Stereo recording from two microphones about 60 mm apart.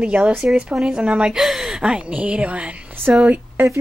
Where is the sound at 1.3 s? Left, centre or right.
Centre; by 2.7 s right.